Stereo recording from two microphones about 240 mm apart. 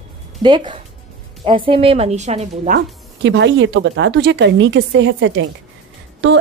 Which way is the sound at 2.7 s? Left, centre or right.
Right.